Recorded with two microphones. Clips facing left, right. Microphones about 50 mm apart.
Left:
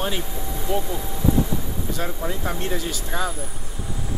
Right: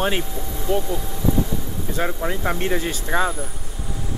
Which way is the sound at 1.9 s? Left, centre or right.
Right.